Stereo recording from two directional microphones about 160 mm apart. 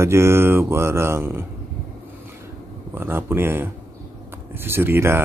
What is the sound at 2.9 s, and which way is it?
Speech, 15° right (ahead or behind).